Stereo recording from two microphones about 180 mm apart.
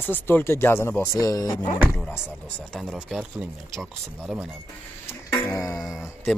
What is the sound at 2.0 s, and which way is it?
Speech, 5° left (ahead or behind).